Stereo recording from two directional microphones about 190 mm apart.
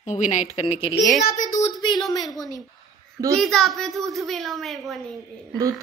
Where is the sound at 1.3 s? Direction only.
45° left (ahead or behind).